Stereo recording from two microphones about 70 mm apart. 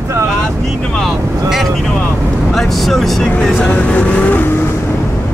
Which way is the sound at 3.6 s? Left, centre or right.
Centre.